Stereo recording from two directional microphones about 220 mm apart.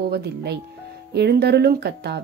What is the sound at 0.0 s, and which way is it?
Speech, 50° right (ahead or behind).